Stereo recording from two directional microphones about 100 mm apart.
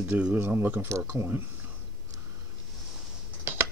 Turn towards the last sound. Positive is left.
turn(degrees=-20)  # may be behind; listen again after turning